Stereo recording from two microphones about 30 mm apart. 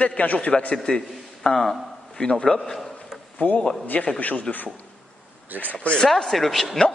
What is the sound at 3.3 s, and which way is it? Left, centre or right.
A man's voice, left.